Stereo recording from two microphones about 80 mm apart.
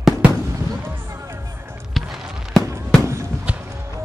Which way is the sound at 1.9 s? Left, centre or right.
Centre.